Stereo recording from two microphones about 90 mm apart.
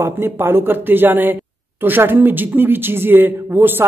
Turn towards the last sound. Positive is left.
turn(degrees=-20)  # may be behind; listen again after turning